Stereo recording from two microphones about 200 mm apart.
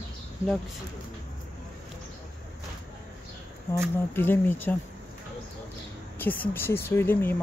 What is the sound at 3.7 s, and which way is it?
Speech, 15° left (ahead or behind).